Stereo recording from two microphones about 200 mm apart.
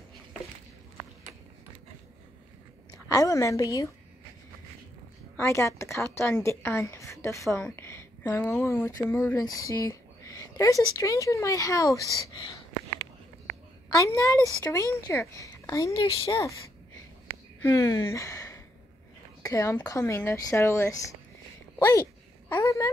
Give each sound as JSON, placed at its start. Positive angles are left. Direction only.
{"t": 2.9, "sound": "a woman's voice", "side_deg": 15}
{"t": 5.4, "sound": "a woman's voice", "side_deg": 15}
{"t": 13.9, "sound": "a woman's voice", "side_deg": 15}
{"t": 17.6, "sound": "a woman's voice", "side_deg": 15}
{"t": 21.7, "sound": "a sound", "side_deg": 15}